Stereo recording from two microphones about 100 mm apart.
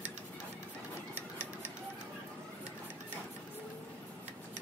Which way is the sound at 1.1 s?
15° right (ahead or behind).